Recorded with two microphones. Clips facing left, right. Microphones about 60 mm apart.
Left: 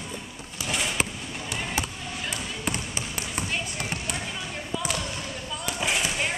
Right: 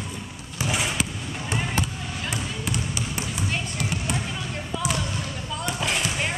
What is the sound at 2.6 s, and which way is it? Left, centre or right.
Trickle, left.